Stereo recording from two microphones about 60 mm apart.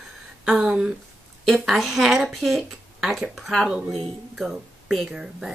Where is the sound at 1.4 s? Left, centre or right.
Centre.